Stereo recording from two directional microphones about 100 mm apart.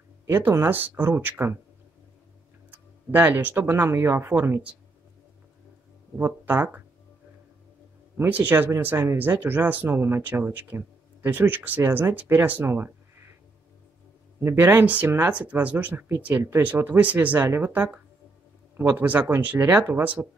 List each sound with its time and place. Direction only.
0.3 s speech: 25° right (ahead or behind)
2.7 s speech: 20° right (ahead or behind)
6.1 s speech: 20° right (ahead or behind)
8.2 s speech: 20° right (ahead or behind)
14.4 s speech: 25° right (ahead or behind)